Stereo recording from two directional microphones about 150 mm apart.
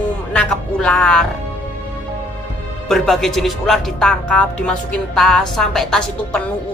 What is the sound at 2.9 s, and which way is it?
A woman's voice, centre (ahead or behind).